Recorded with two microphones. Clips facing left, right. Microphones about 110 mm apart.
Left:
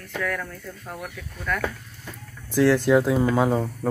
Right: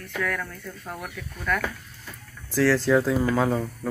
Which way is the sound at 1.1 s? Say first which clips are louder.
Right 2 dB; 5° left (ahead or behind).